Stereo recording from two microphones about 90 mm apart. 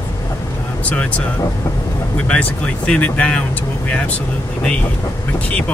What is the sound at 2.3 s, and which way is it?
Speech, 10° left (ahead or behind).